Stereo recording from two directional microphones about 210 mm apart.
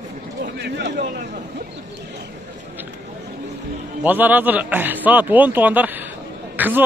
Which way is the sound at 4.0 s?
10° right (ahead or behind).